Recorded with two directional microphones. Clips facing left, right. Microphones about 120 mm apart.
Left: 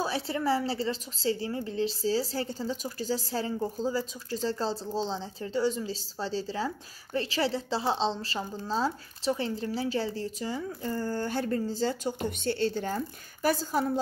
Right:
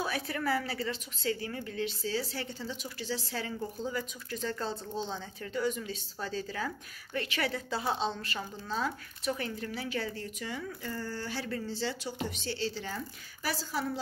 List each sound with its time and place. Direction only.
0.0 s a woman's voice: 25° left (ahead or behind); by 13.8 s 45° left (ahead or behind)